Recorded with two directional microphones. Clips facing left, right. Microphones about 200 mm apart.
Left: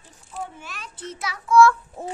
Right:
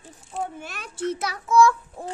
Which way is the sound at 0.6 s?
55° right (ahead or behind).